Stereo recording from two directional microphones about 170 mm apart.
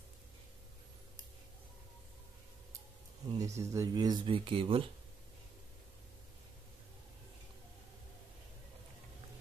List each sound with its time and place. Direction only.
3.3 s speech: 20° right (ahead or behind)